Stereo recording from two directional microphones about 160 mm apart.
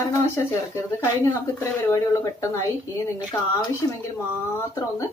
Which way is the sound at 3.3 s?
15° left (ahead or behind).